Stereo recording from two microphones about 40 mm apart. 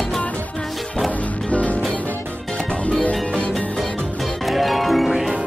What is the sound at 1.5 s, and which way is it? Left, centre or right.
Music, left.